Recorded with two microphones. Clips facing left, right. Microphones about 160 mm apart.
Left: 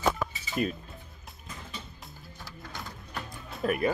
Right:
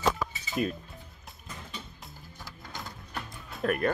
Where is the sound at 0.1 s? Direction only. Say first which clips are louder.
Even; centre (ahead or behind).